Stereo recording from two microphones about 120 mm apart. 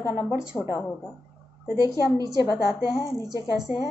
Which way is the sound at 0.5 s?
5° left (ahead or behind).